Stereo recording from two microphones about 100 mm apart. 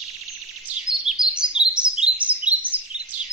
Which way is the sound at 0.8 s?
5° right (ahead or behind).